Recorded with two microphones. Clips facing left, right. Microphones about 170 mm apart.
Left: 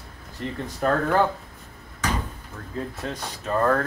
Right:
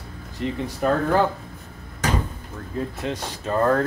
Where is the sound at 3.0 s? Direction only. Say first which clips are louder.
Right 4 dB; 25° right (ahead or behind).